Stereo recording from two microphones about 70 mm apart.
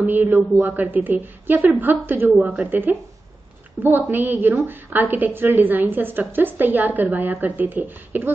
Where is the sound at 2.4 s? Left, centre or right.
Centre.